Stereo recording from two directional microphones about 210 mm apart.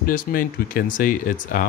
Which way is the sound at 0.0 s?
45° left (ahead or behind).